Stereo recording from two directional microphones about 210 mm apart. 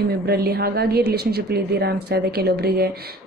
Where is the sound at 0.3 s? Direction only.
50° right (ahead or behind).